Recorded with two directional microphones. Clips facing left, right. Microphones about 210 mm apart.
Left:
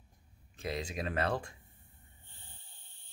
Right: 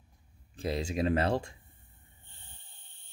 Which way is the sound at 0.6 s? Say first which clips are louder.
Right 6 dB; 30° right (ahead or behind).